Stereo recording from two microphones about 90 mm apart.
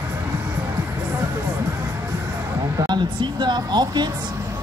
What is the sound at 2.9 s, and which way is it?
Speech, 55° right (ahead or behind).